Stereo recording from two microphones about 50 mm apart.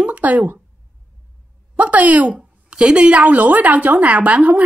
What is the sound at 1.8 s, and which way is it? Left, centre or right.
A woman's voice, right.